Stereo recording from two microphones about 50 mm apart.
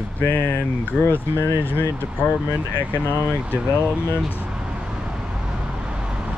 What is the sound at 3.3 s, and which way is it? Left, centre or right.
Speech, right.